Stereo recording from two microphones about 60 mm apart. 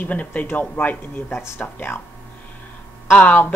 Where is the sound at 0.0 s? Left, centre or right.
Left.